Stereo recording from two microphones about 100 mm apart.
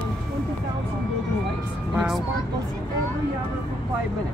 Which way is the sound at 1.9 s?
5° right (ahead or behind).